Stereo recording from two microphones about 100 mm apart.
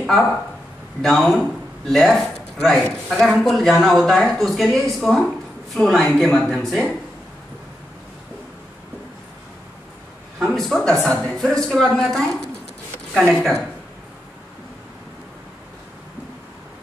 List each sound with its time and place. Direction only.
1.0 s a man's voice: 5° left (ahead or behind)
10.4 s a man's voice: 5° left (ahead or behind)